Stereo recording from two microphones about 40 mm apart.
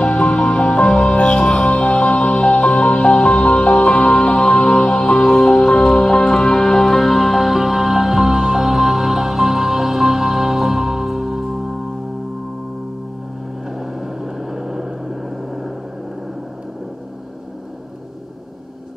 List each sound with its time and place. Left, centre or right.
0.0 s music: left; by 11.8 s centre
13.7 s vehicle: centre